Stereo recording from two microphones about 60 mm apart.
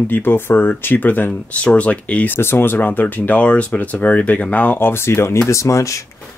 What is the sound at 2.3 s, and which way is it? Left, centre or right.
Speech, left.